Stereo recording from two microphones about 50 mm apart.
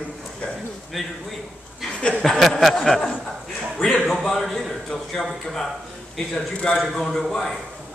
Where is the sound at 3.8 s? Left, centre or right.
Centre.